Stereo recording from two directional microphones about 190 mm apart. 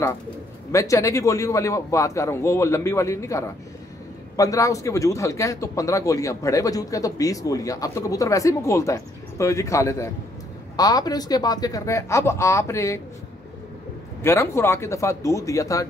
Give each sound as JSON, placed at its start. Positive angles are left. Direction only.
{"t": 0.7, "sound": "a man's voice", "side_deg": 15}
{"t": 14.2, "sound": "a man's voice", "side_deg": 15}